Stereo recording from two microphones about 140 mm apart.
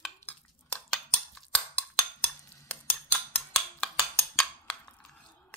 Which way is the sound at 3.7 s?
5° left (ahead or behind).